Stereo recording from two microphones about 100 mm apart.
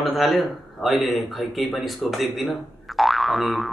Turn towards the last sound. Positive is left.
turn(degrees=0)  # may be behind; listen again after turning